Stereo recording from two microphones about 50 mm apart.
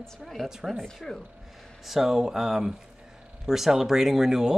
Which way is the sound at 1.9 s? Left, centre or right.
Centre.